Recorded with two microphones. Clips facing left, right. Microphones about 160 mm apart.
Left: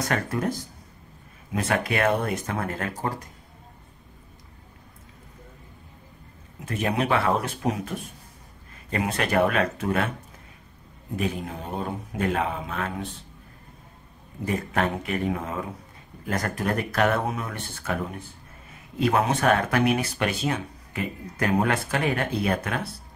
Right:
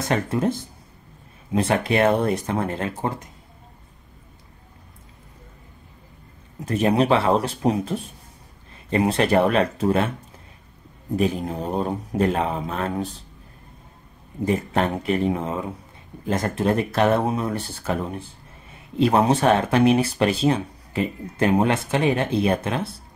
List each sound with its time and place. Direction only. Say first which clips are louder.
0.1 s speech: right 7 dB; 25° right (ahead or behind)
6.6 s speech: right 6 dB; 35° right (ahead or behind)
11.1 s speech: right 6 dB; 35° right (ahead or behind)
14.4 s speech: right 4 dB; 30° right (ahead or behind)